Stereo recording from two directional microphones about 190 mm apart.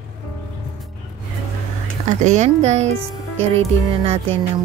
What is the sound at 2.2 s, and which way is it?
Speech, 40° right (ahead or behind).